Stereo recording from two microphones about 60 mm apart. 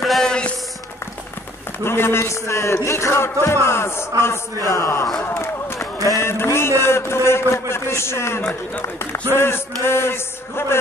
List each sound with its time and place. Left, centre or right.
0.0 s a sound: centre
1.9 s a man's voice: left
6.2 s a man's voice: left
8.4 s a man's voice: left
8.8 s a man's voice: left